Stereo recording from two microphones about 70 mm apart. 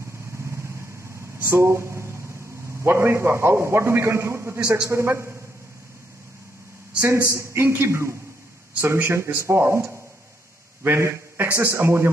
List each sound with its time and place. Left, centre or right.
0.0 s vehicle: right
4.8 s a man's voice: right
7.1 s a man's voice: right
10.8 s a sound: right
11.4 s a man's voice: right